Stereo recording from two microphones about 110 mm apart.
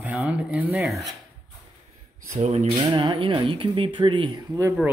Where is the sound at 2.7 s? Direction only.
40° right (ahead or behind).